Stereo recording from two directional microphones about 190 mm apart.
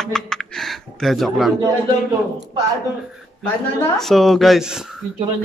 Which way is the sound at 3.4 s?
15° left (ahead or behind).